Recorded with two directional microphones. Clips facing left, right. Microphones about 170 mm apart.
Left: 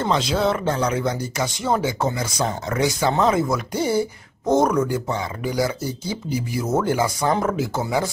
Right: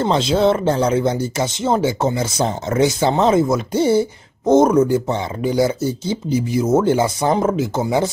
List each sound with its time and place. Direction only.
0.0 s speech: 25° right (ahead or behind)